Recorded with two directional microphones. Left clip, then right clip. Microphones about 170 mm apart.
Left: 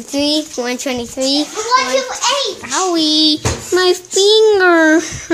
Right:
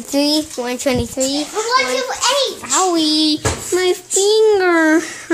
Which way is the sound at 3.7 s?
15° left (ahead or behind).